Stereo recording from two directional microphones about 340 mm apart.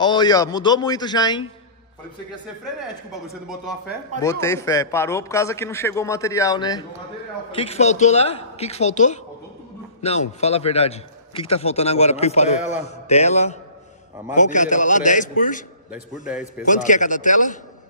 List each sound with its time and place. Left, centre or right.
0.0 s a man's voice: centre
2.6 s a man's voice: centre; by 15.6 s left
15.9 s speech: centre
16.6 s a woman's voice: left